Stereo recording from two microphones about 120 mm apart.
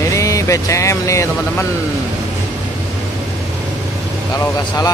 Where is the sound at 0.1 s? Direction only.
25° left (ahead or behind).